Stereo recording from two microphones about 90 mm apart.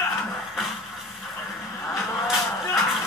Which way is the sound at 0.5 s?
Centre (ahead or behind).